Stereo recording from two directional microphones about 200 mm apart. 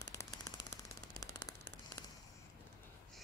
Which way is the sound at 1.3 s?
15° left (ahead or behind).